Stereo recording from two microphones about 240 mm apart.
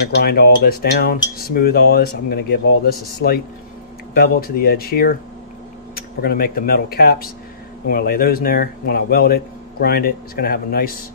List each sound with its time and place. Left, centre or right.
0.0 s cutlery: left